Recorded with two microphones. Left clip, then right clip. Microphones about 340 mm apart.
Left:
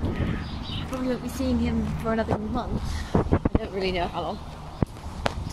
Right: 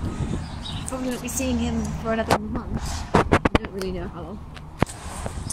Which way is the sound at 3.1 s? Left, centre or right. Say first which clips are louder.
Right 6 dB; right.